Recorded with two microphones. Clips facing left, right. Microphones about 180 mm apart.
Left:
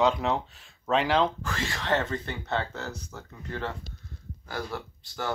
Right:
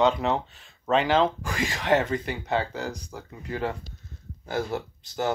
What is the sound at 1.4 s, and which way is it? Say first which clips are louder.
Speech: right 5 dB; 15° right (ahead or behind).